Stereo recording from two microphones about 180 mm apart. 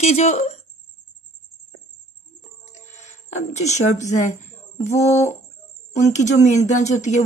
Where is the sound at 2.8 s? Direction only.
40° left (ahead or behind).